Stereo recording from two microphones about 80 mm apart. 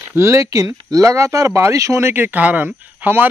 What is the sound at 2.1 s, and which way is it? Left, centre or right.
Speech, right.